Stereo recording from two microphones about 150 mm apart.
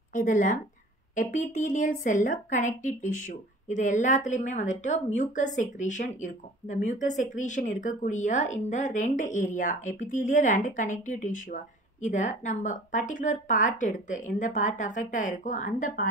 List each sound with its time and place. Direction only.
0.1 s a woman's voice: 60° left (ahead or behind)